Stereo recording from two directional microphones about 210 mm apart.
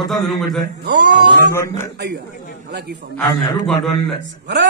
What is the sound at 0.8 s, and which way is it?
A man's voice, 55° right (ahead or behind).